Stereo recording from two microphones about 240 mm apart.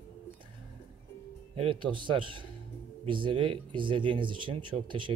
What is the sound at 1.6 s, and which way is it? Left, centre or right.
Speech, right.